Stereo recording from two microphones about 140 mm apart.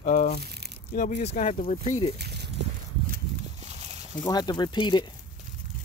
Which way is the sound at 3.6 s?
50° right (ahead or behind).